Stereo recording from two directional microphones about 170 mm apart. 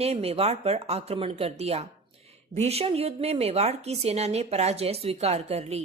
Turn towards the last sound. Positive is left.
turn(degrees=-40)  # may be behind; listen again after turning